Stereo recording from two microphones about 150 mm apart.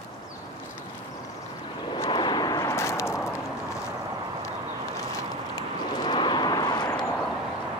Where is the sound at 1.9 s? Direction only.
35° left (ahead or behind).